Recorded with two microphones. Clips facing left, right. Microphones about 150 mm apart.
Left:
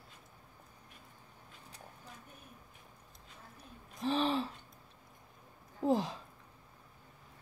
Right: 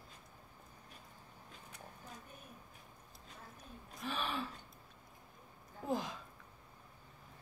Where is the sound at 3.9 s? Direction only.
30° left (ahead or behind).